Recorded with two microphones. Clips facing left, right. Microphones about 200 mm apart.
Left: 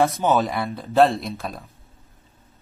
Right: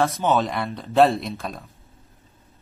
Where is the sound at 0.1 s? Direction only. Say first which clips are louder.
Left 1 dB; centre (ahead or behind).